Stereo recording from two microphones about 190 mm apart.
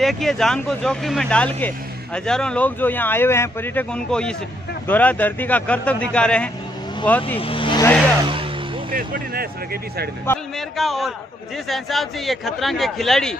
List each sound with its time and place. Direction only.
0.0 s speech: centre (ahead or behind)
7.3 s speech: 30° left (ahead or behind)
8.9 s speech: 50° right (ahead or behind)
10.3 s a sound: 10° left (ahead or behind)
10.8 s speech: centre (ahead or behind)